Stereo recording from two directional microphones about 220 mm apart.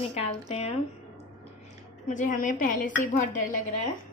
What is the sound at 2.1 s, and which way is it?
A woman's voice, 35° left (ahead or behind).